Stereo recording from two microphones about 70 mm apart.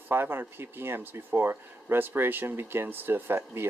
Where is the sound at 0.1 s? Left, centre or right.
Right.